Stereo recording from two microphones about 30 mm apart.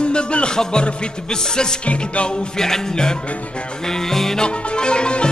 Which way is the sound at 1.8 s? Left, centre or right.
Left.